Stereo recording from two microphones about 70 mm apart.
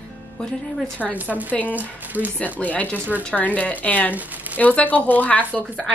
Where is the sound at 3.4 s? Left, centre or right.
Left.